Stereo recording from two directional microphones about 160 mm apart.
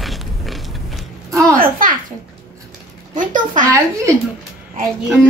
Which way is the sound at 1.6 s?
60° right (ahead or behind).